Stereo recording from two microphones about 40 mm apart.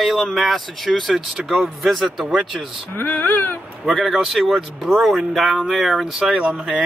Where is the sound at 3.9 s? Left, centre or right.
Centre.